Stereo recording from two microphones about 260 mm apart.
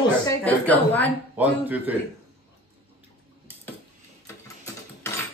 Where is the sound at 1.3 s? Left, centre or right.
Centre.